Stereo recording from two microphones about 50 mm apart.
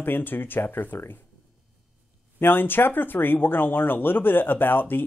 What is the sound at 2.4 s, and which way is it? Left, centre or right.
Speech, left.